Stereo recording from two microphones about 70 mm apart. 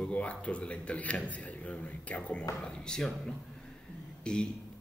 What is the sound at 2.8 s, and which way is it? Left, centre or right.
Speech, centre.